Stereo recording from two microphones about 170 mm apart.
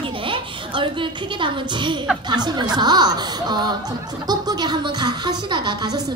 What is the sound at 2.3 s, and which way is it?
Speech, 25° right (ahead or behind).